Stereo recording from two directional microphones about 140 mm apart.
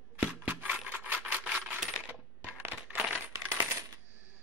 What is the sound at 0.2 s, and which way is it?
Coin, 10° right (ahead or behind).